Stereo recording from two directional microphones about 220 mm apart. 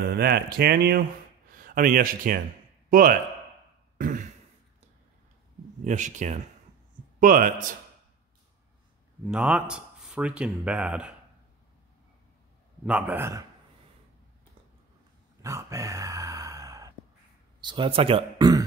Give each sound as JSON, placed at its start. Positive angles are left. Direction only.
{"t": 0.1, "sound": "a man's voice", "side_deg": -45}
{"t": 4.0, "sound": "throat clearing", "side_deg": -35}
{"t": 5.9, "sound": "speech", "side_deg": -35}
{"t": 9.3, "sound": "speech", "side_deg": -5}
{"t": 12.8, "sound": "speech", "side_deg": -5}
{"t": 15.4, "sound": "a sound", "side_deg": -15}
{"t": 17.6, "sound": "speech", "side_deg": -20}